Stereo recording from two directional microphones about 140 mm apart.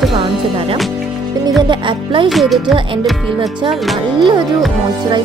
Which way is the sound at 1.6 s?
35° right (ahead or behind).